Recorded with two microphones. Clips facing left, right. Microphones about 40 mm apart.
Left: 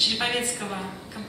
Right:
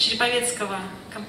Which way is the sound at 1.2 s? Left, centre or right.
Right.